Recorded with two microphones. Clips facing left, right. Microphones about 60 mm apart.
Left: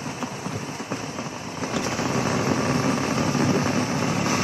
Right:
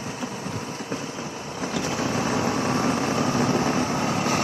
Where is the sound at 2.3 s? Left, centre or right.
Left.